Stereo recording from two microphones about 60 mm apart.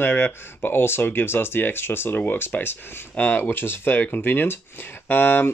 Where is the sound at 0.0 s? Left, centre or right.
Left.